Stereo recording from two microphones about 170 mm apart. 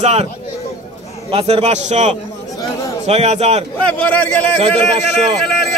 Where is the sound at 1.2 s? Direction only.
35° right (ahead or behind).